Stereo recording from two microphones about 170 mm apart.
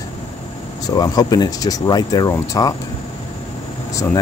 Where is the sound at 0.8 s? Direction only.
25° left (ahead or behind).